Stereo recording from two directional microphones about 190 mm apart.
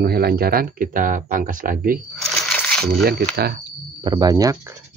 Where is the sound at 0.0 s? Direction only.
55° right (ahead or behind).